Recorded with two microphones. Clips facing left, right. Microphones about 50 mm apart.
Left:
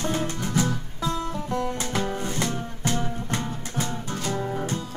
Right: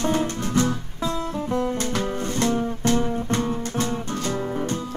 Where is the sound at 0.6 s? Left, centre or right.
Right.